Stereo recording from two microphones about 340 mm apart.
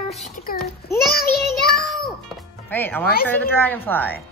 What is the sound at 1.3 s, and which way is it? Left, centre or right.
Speech, left.